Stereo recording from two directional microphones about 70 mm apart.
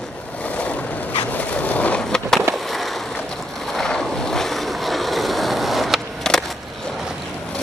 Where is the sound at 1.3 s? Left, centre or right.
Left.